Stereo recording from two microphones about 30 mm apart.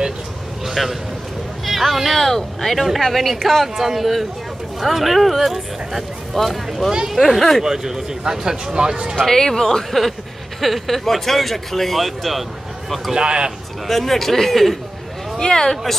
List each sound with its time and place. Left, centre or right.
0.7 s speech: centre
2.1 s speech: centre
7.6 s speech: centre
9.2 s speech: centre
9.8 s speech: centre
13.1 s speech: right
13.8 s speech: centre
15.3 s speech: left